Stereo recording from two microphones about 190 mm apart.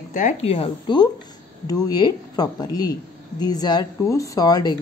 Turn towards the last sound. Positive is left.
turn(degrees=20)  # may be behind; listen again after turning